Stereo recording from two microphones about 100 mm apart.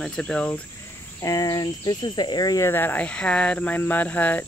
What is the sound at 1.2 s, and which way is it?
Cricket, 40° left (ahead or behind).